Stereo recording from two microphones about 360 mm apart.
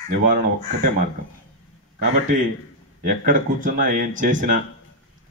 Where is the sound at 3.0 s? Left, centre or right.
Right.